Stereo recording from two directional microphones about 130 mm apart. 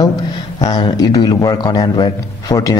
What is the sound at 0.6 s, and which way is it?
A man's voice, 30° left (ahead or behind).